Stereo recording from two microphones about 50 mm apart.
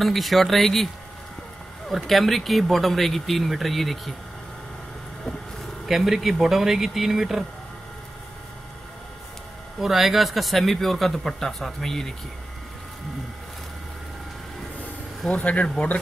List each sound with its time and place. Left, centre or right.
0.0 s speech: centre
1.9 s speech: centre
5.9 s speech: centre
9.8 s speech: centre
15.2 s speech: left